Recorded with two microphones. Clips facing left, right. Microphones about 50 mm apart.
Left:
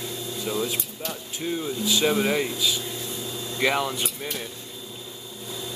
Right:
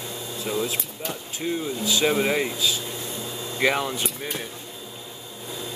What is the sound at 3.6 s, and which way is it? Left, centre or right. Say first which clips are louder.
Speech: right 1 dB; centre.